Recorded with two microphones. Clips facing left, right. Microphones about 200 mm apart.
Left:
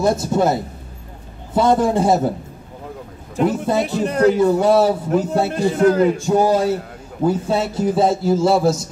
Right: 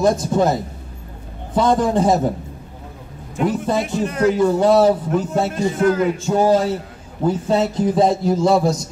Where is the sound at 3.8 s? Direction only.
35° left (ahead or behind).